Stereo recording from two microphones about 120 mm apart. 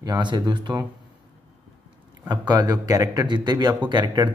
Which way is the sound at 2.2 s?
35° right (ahead or behind).